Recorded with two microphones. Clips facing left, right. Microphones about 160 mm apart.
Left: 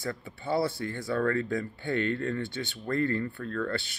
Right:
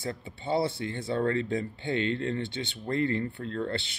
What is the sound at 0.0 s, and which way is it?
Speech, 25° right (ahead or behind).